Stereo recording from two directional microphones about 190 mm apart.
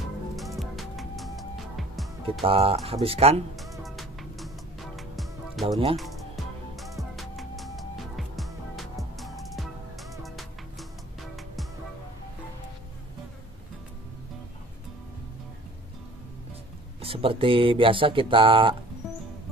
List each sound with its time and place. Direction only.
0.6 s music: centre (ahead or behind)
2.4 s speech: 30° right (ahead or behind)
3.8 s music: centre (ahead or behind)
17.0 s speech: 30° right (ahead or behind)
19.0 s music: centre (ahead or behind)